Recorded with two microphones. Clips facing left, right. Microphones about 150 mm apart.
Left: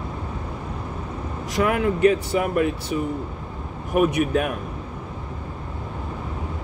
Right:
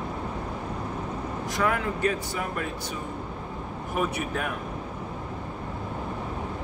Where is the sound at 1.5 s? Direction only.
20° left (ahead or behind).